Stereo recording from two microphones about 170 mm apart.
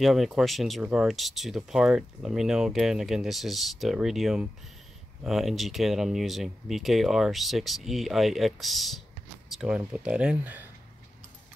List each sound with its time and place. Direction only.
0.0 s speech: centre (ahead or behind)